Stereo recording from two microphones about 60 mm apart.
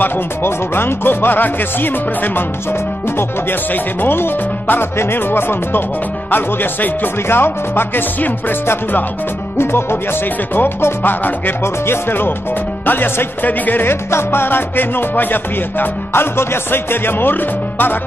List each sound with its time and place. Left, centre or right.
0.0 s speech: left
9.6 s music: left
10.5 s speech: left